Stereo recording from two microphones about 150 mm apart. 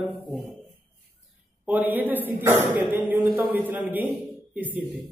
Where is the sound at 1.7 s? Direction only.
10° right (ahead or behind).